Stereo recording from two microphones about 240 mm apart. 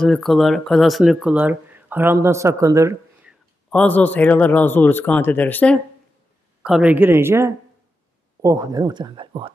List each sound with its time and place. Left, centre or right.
0.0 s speech: centre
3.7 s speech: centre
6.6 s speech: centre; by 9.5 s right